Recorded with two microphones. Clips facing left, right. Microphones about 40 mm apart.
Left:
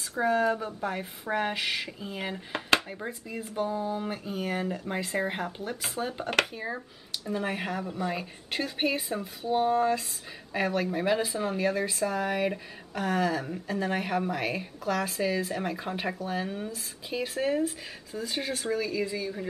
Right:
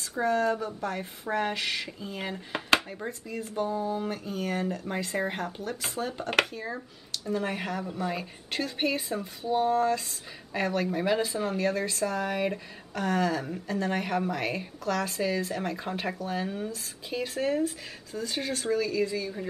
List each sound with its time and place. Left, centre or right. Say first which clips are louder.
0.2 s a woman's voice: left 1 dB; centre